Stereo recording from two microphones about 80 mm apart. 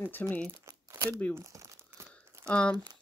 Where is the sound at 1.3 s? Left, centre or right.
Right.